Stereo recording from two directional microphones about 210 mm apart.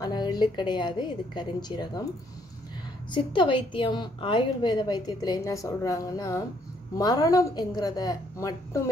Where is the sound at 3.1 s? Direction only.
25° left (ahead or behind).